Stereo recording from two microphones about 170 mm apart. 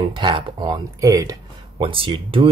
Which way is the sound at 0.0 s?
30° right (ahead or behind).